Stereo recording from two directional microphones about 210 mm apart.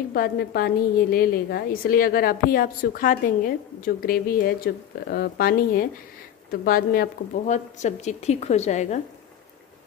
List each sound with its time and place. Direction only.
0.1 s a woman's voice: 45° left (ahead or behind)